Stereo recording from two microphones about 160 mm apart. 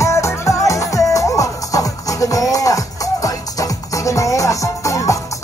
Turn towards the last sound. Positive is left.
turn(degrees=20)  # may be behind; listen again after turning